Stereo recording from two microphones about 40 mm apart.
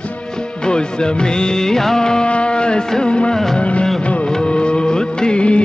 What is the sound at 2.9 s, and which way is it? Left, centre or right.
Music, left.